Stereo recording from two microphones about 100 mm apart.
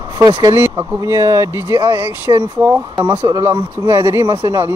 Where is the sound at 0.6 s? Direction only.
25° right (ahead or behind).